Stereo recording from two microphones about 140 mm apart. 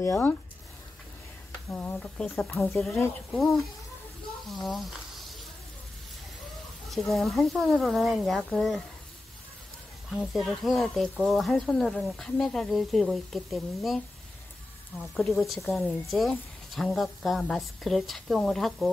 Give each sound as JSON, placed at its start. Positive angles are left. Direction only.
{"t": 0.0, "sound": "speech", "side_deg": 20}
{"t": 1.7, "sound": "speech", "side_deg": 15}
{"t": 6.9, "sound": "speech", "side_deg": 0}
{"t": 10.1, "sound": "speech", "side_deg": 0}
{"t": 15.1, "sound": "speech", "side_deg": 0}